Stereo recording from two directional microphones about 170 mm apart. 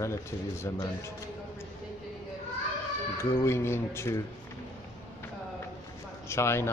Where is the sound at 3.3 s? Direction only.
15° left (ahead or behind).